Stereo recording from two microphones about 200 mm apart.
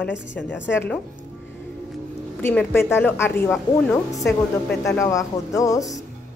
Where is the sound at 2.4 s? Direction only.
10° left (ahead or behind).